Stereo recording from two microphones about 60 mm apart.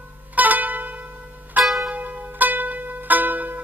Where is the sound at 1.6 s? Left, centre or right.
Centre.